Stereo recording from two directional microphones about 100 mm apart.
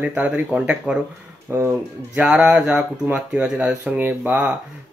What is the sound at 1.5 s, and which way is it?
Speech, 20° right (ahead or behind).